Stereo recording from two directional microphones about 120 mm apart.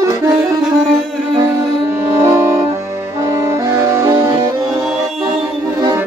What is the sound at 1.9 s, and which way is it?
Music, 20° right (ahead or behind).